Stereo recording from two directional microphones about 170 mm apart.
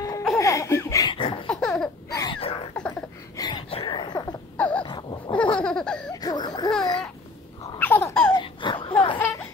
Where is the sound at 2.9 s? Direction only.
25° left (ahead or behind).